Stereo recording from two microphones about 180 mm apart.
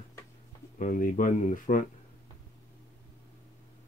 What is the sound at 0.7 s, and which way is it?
Speech, 45° left (ahead or behind).